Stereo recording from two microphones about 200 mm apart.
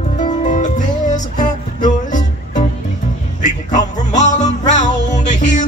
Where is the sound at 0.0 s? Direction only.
35° left (ahead or behind).